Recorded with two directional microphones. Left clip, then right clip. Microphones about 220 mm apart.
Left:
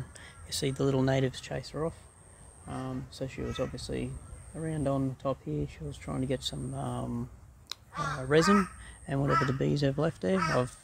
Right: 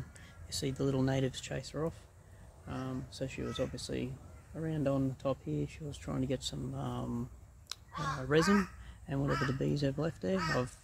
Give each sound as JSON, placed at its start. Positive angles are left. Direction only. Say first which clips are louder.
{"t": 0.2, "sound": "speech", "louder": "left 5 dB", "side_deg": 20}